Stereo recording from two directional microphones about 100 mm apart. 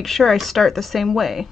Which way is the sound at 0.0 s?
Centre (ahead or behind).